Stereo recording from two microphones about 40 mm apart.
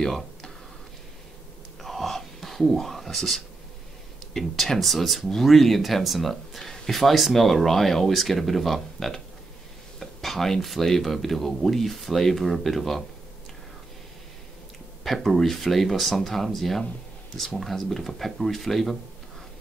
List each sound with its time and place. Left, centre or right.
0.0 s speech: centre
1.8 s a sound: centre
4.3 s speech: centre
15.0 s speech: centre